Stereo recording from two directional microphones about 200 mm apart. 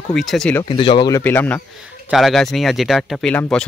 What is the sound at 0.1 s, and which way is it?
Speech, centre (ahead or behind).